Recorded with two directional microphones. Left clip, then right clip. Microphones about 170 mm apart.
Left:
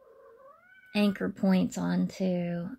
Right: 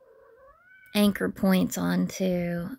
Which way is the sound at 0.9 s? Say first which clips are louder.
Right 4 dB; 30° right (ahead or behind).